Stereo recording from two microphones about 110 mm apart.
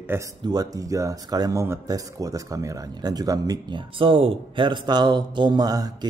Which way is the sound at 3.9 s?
55° right (ahead or behind).